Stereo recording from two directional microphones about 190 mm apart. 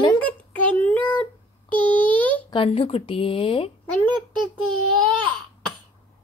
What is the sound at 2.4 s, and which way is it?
Speech, 25° left (ahead or behind).